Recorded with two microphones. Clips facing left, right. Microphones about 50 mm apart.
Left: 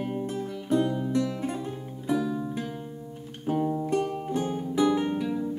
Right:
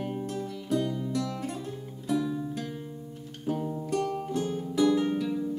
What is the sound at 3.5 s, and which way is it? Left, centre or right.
Music, left.